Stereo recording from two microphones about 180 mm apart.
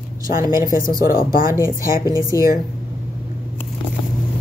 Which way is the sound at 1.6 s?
20° right (ahead or behind).